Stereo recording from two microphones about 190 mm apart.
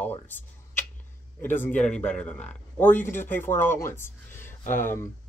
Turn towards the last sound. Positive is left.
turn(degrees=10)  # may be behind; listen again after turning